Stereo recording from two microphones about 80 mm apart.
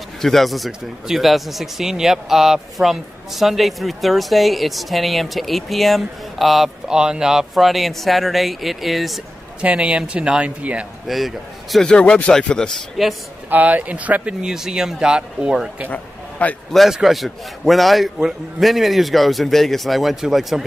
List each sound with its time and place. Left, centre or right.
0.2 s speech: centre
9.6 s speech: centre
11.1 s speech: centre
11.9 s speech: centre
13.0 s speech: centre
13.5 s speech: right
15.9 s a sound: centre
16.7 s speech: centre